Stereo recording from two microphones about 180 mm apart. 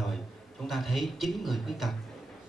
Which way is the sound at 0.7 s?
Centre (ahead or behind).